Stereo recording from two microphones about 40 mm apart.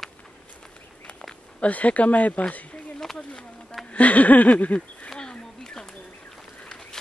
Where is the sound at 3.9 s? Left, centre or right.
Left.